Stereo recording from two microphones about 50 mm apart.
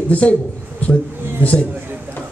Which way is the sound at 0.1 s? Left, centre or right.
Left.